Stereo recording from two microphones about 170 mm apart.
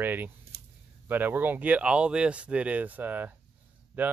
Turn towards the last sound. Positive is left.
turn(degrees=-10)  # may be behind; listen again after turning